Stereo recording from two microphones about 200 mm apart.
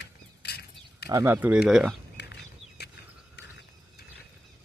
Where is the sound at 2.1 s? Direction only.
60° left (ahead or behind).